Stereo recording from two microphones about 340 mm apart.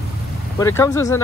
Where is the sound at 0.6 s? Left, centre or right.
Centre.